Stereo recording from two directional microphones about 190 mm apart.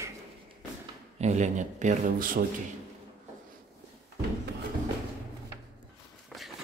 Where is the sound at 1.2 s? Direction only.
35° right (ahead or behind).